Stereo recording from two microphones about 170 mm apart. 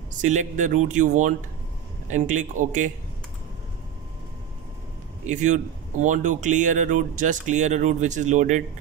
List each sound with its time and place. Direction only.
0.2 s speech: 45° right (ahead or behind)
5.2 s speech: 45° right (ahead or behind)